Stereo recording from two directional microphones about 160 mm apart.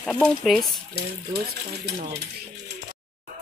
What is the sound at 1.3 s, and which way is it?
Stir, 85° right.